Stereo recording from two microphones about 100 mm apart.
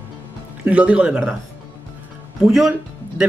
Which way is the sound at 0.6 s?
15° right (ahead or behind).